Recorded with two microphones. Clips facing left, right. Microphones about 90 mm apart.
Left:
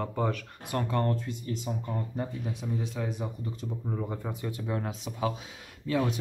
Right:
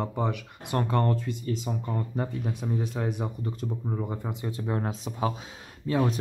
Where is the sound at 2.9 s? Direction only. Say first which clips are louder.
Right 3 dB; 60° right (ahead or behind).